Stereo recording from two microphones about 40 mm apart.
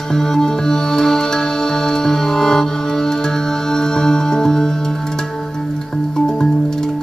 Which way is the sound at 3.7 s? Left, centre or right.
Centre.